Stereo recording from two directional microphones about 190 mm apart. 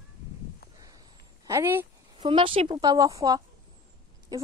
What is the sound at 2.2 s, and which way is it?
A woman's voice, 30° right (ahead or behind).